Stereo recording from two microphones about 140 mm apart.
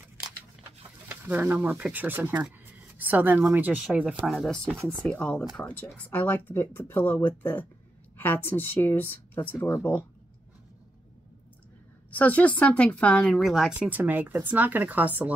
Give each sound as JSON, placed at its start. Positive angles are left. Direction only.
{"t": 1.0, "sound": "speech", "side_deg": -10}
{"t": 12.1, "sound": "speech", "side_deg": 10}